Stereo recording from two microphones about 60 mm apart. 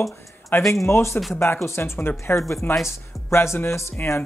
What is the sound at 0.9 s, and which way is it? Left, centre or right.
Speech, left.